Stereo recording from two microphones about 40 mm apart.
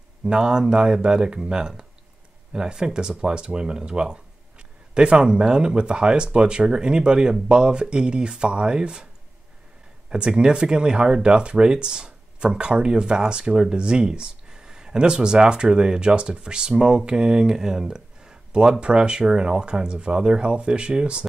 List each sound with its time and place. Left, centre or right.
0.2 s speech: right
10.0 s speech: right